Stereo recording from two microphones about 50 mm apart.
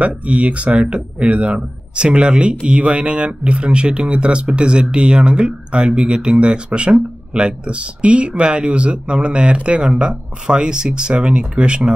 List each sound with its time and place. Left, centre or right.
0.0 s speech: right